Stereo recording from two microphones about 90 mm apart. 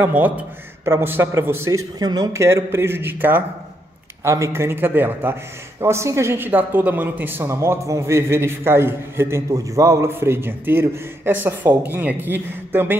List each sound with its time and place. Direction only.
0.0 s a man's voice: 20° right (ahead or behind); by 2.0 s 35° right (ahead or behind)
2.0 s speech: 45° right (ahead or behind)
2.3 s a man's voice: 30° right (ahead or behind)
4.2 s a man's voice: 35° right (ahead or behind)